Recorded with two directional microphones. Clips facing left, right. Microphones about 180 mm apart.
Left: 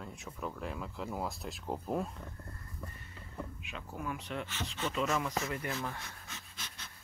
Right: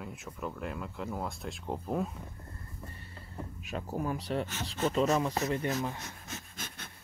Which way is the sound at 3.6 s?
40° right (ahead or behind).